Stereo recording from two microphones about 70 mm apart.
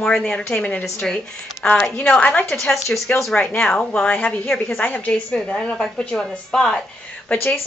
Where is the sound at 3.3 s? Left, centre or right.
Centre.